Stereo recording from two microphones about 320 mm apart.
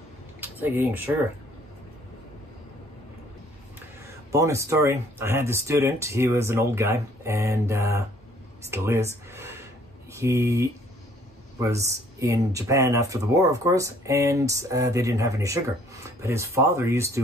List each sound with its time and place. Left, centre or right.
0.4 s speech: centre
4.3 s speech: centre